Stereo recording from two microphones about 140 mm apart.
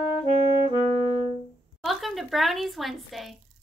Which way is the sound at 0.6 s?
30° right (ahead or behind).